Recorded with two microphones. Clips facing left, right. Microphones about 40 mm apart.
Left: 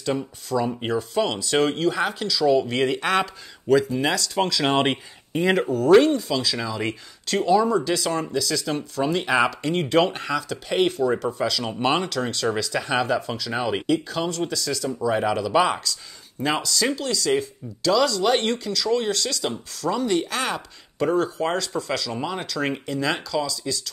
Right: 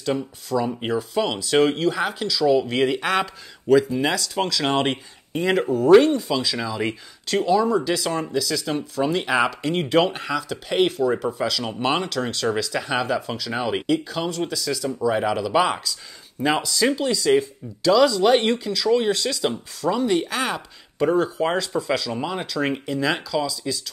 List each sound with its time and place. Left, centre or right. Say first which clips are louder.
0.0 s speech: right 1 dB; centre